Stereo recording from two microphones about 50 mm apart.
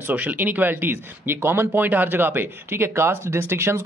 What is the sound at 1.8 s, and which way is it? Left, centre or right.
Speech, right.